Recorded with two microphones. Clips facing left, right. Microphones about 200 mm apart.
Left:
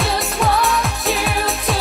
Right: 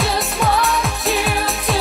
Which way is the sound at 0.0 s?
Centre (ahead or behind).